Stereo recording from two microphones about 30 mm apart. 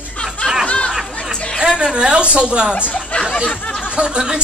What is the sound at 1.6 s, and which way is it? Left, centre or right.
A woman's voice, right.